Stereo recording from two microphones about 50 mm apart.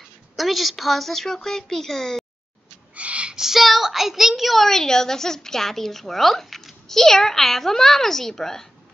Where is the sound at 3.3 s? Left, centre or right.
Centre.